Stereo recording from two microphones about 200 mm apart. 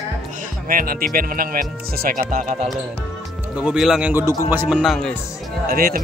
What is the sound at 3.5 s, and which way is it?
Speech, 5° right (ahead or behind).